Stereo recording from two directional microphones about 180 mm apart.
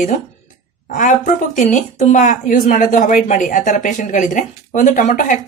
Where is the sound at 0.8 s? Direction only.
45° left (ahead or behind).